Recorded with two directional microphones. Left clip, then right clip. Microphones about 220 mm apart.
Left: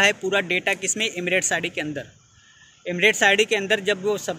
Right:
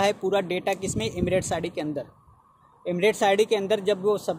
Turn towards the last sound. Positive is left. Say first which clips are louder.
# even
turn(degrees=0)  # may be behind; listen again after turning